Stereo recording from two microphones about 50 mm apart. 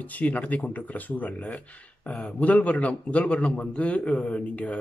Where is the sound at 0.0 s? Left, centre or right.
Left.